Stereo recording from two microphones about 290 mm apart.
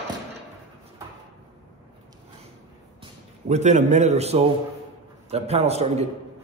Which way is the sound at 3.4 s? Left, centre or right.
Right.